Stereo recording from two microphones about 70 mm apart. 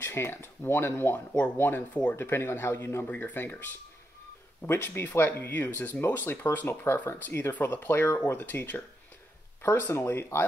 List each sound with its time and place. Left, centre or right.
0.0 s speech: left